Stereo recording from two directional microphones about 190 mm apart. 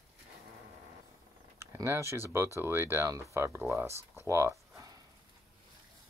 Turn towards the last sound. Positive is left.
turn(degrees=-15)  # may be behind; listen again after turning